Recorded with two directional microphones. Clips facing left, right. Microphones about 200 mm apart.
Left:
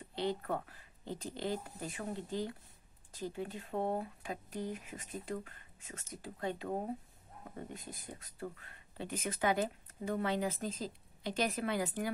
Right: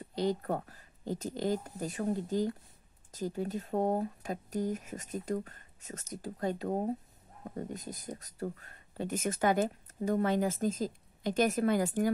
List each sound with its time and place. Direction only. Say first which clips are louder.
0.1 s speech: right 4 dB; 40° right (ahead or behind)